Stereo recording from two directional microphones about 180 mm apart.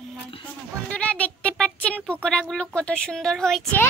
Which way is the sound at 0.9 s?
5° left (ahead or behind).